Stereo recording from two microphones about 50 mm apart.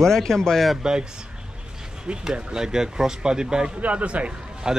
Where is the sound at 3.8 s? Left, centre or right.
Right.